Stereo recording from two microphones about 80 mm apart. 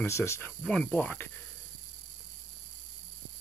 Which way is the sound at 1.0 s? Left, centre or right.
Left.